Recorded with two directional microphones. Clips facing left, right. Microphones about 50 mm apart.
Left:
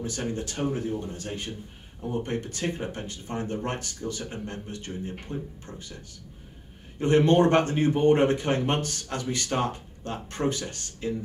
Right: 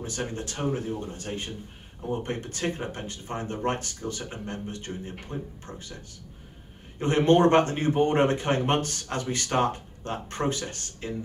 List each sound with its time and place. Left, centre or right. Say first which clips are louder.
0.0 s speech: left 2 dB; right
7.0 s speech: even; right